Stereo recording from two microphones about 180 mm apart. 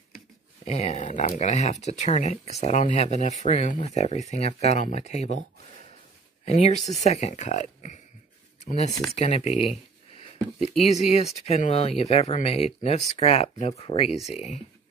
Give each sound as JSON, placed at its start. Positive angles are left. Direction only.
{"t": 0.7, "sound": "speech", "side_deg": 35}
{"t": 6.4, "sound": "speech", "side_deg": 35}
{"t": 10.8, "sound": "speech", "side_deg": 35}